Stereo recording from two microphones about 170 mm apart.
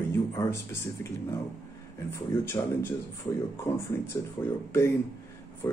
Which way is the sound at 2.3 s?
15° left (ahead or behind).